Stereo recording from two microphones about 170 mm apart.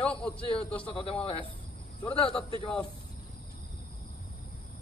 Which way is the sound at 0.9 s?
35° left (ahead or behind).